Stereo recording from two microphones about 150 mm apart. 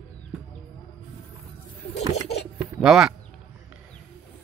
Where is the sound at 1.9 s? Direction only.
45° left (ahead or behind).